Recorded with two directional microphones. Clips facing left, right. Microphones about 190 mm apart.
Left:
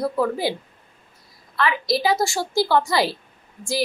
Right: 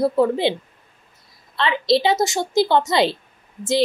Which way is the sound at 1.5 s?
25° right (ahead or behind).